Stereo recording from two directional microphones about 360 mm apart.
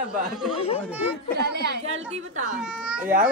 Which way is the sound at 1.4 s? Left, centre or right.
Right.